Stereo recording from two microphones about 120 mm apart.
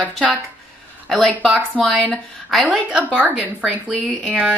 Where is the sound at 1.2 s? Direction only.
10° left (ahead or behind); by 4.5 s 5° right (ahead or behind).